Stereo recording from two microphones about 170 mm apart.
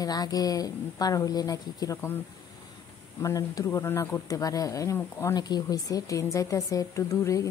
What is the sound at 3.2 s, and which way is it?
Speech, 20° left (ahead or behind).